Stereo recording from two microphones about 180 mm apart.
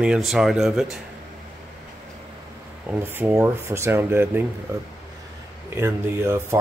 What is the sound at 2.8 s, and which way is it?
Speech, 10° right (ahead or behind).